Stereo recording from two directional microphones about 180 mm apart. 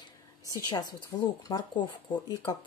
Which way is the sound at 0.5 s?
20° left (ahead or behind).